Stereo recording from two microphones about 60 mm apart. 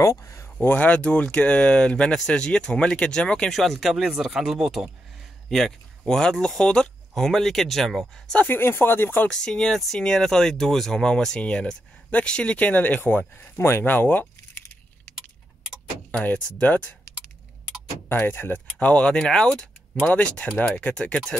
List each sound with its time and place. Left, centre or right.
0.2 s a sound: left
0.7 s speech: left
3.5 s speech: centre
5.5 s speech: centre
8.5 s speech: left
9.3 s speech: centre; by 13.2 s left
13.4 s speech: left
13.9 s a sound: left
16.1 s speech: left
18.0 s speech: left
18.9 s speech: centre